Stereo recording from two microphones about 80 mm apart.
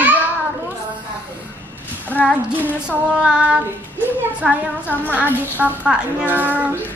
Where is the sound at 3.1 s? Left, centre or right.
Centre.